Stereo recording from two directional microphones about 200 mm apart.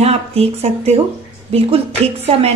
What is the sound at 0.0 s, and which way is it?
A woman's voice, 30° right (ahead or behind).